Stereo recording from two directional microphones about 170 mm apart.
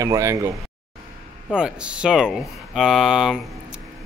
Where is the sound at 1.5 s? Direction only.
5° right (ahead or behind).